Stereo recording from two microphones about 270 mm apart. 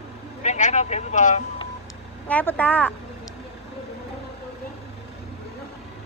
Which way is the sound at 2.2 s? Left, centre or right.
Centre.